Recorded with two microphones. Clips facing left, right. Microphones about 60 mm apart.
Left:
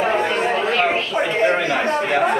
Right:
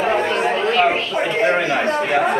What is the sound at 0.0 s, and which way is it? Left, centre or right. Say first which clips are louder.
Chatter: right 1 dB; centre.